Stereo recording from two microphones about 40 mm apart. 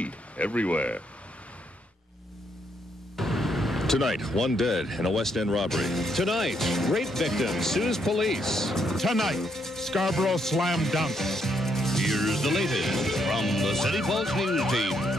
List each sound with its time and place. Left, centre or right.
0.0 s speech: left
3.2 s speech: centre